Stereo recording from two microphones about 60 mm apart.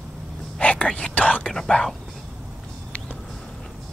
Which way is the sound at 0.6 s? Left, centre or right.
Centre.